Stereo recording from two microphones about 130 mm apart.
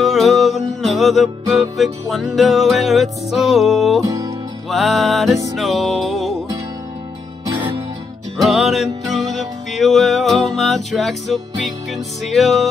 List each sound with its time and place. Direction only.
0.0 s music: centre (ahead or behind)
4.0 s music: 25° right (ahead or behind)
4.6 s music: centre (ahead or behind)
8.4 s music: centre (ahead or behind)